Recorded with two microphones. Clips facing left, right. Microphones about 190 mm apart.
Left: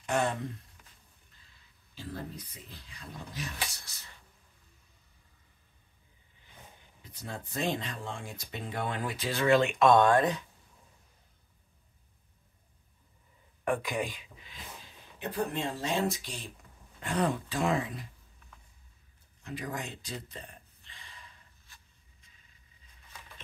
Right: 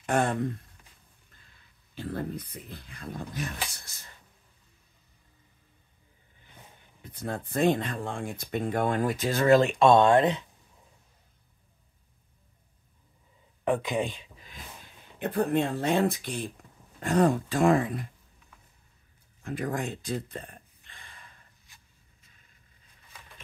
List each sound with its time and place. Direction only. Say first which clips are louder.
0.0 s speech: right 4 dB; 50° right (ahead or behind)
2.0 s speech: right 7 dB; 55° right (ahead or behind)
7.0 s speech: right 7 dB; 55° right (ahead or behind); by 10.4 s 25° right (ahead or behind)
13.7 s speech: right 4 dB; 25° right (ahead or behind)
15.1 s speech: right 7 dB; 55° right (ahead or behind)
17.0 s speech: right 7 dB; 45° right (ahead or behind)
19.4 s a sound: right 7 dB; 50° right (ahead or behind)